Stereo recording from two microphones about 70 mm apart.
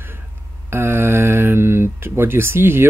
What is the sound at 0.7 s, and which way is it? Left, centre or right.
A man's voice, right.